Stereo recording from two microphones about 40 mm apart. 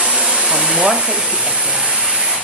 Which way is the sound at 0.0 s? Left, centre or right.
Right.